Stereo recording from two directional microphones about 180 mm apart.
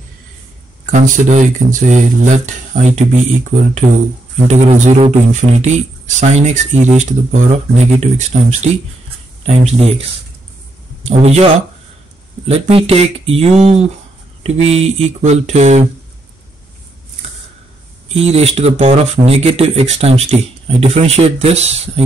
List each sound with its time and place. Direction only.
0.9 s speech: 45° right (ahead or behind)
4.5 s speech: 40° right (ahead or behind)
11.1 s speech: 35° right (ahead or behind)
12.4 s speech: 35° right (ahead or behind)
18.1 s speech: 35° right (ahead or behind)